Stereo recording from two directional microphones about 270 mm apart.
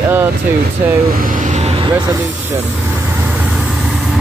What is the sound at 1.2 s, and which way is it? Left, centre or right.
Vehicle, right.